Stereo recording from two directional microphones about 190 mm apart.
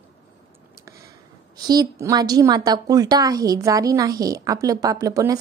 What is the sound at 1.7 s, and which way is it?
A woman's voice, 20° right (ahead or behind).